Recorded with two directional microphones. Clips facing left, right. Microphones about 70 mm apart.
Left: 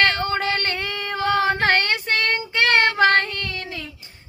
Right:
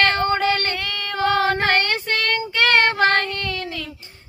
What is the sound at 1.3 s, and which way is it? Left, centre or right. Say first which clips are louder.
Child singing: left 1 dB; left.